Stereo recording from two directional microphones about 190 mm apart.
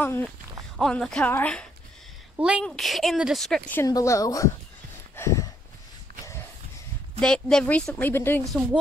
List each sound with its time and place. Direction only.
0.0 s speech: 10° left (ahead or behind)
2.3 s a woman's voice: 5° right (ahead or behind); by 4.5 s 15° left (ahead or behind)
5.1 s a sound: 15° left (ahead or behind)
7.2 s speech: 5° left (ahead or behind)